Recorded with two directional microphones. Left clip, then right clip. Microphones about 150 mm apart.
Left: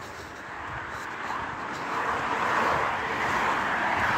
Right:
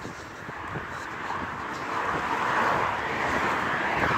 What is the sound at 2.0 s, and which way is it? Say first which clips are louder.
Vehicle: even; 45° right (ahead or behind).